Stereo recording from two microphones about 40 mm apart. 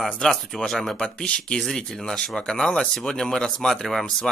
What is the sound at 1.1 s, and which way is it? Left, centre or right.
Speech, left.